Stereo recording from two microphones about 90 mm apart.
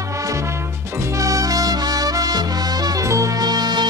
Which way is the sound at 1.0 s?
35° right (ahead or behind).